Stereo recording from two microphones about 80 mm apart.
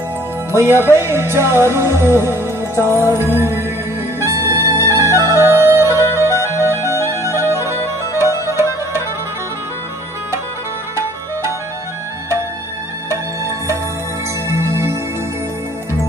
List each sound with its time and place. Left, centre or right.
0.6 s music: right
14.5 s music: right